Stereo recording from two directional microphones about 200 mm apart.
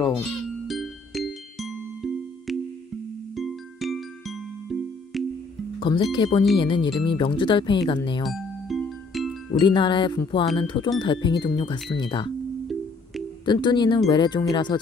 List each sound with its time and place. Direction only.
0.7 s music: centre (ahead or behind)
5.8 s speech: 25° left (ahead or behind)
8.3 s music: centre (ahead or behind)
9.6 s speech: 25° left (ahead or behind)
13.5 s speech: 20° left (ahead or behind)